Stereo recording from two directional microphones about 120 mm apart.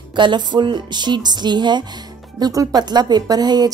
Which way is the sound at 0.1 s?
40° right (ahead or behind).